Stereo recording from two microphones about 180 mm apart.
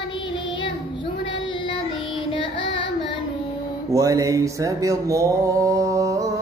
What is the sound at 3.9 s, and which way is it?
Mantra, 20° right (ahead or behind).